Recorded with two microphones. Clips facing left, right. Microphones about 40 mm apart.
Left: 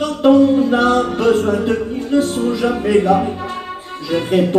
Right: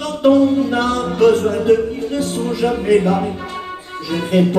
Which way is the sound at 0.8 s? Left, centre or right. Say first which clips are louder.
Even; left.